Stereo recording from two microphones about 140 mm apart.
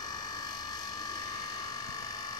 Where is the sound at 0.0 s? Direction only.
30° left (ahead or behind).